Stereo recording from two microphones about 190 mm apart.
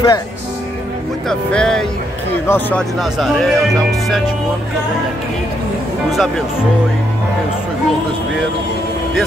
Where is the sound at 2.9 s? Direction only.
Centre (ahead or behind).